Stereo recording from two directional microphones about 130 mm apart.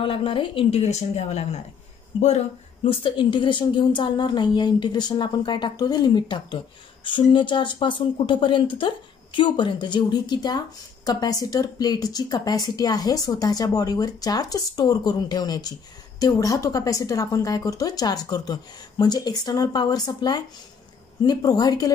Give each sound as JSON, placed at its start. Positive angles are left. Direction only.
{"t": 0.0, "sound": "a woman's voice", "side_deg": 40}
{"t": 2.8, "sound": "a woman's voice", "side_deg": 40}